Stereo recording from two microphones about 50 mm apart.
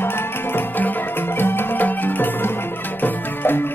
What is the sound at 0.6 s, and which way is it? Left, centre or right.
Music, left.